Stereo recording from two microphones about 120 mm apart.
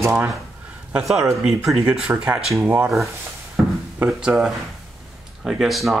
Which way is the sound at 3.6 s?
10° right (ahead or behind).